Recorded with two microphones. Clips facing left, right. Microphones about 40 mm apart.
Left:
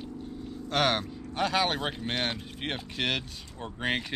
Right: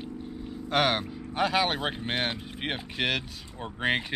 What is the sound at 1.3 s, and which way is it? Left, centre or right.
Speech, centre.